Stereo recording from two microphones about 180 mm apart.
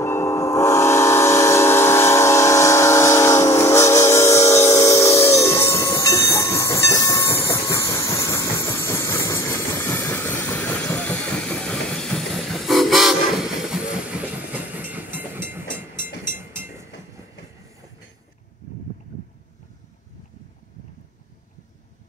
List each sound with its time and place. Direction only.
0.0 s train: 15° left (ahead or behind); by 15.6 s 10° right (ahead or behind)
16.3 s vehicle: 10° right (ahead or behind)